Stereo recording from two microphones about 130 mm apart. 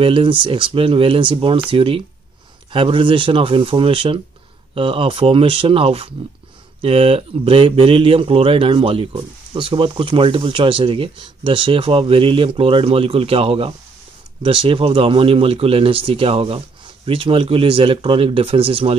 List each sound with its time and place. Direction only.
0.0 s speech: 40° right (ahead or behind)